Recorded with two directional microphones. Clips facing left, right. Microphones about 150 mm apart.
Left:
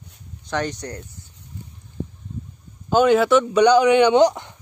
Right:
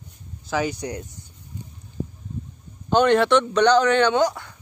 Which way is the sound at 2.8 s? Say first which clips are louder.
Left 2 dB; 5° left (ahead or behind).